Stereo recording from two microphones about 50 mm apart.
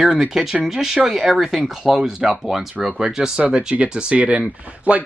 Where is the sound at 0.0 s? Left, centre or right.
Centre.